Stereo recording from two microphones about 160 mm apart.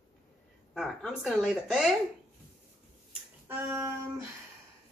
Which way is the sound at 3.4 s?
15° right (ahead or behind).